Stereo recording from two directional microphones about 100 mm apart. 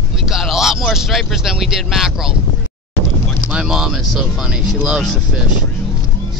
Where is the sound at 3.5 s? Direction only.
5° right (ahead or behind).